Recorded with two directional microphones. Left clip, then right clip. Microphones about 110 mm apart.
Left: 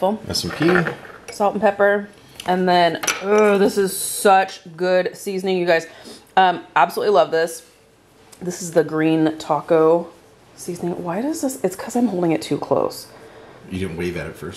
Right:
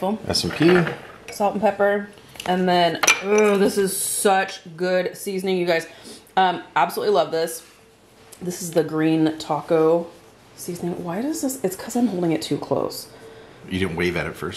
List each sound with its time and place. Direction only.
0.7 s speech: 15° left (ahead or behind)
3.0 s dishes: 15° right (ahead or behind)
3.3 s speech: 15° left (ahead or behind)
13.7 s speech: 20° right (ahead or behind)